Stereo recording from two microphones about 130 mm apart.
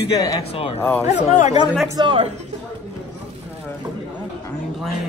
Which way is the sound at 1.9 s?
40° right (ahead or behind).